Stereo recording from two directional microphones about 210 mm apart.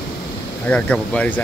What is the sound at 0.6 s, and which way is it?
Speech, 5° left (ahead or behind).